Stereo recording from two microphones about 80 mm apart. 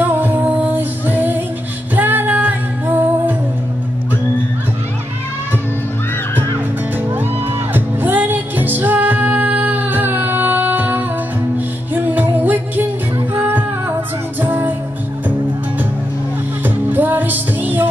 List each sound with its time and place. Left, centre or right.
0.0 s music: right
7.7 s music: right
16.6 s music: right